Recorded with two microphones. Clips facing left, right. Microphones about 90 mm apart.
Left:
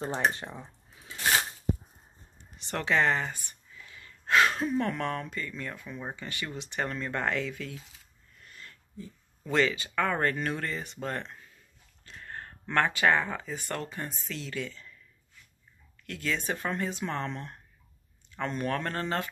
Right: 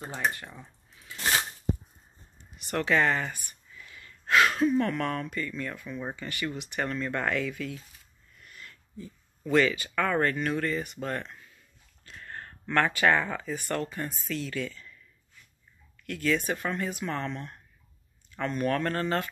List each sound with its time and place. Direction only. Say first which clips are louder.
0.3 s a sound: left 1 dB; 25° left (ahead or behind)
2.6 s gasp: right 1 dB; 25° left (ahead or behind)
4.6 s speech: right 3 dB; 20° left (ahead or behind)
8.5 s a sound: right 1 dB; 30° left (ahead or behind)
9.4 s speech: right 3 dB; 25° left (ahead or behind)
16.1 s speech: right 4 dB; 20° left (ahead or behind)